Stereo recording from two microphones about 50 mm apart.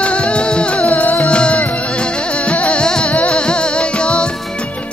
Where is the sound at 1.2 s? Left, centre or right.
Left.